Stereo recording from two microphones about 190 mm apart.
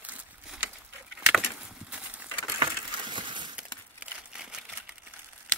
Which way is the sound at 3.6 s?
5° right (ahead or behind).